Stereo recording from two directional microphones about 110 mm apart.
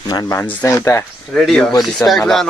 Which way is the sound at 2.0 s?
30° left (ahead or behind).